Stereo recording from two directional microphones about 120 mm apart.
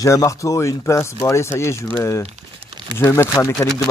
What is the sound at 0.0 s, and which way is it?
Speech, 25° left (ahead or behind).